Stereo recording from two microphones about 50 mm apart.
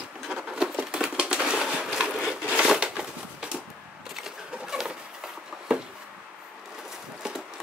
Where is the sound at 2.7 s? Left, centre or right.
Centre.